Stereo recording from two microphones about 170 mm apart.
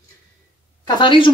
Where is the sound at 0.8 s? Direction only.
25° left (ahead or behind).